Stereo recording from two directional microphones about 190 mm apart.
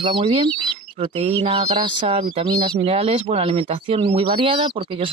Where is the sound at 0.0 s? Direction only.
25° right (ahead or behind).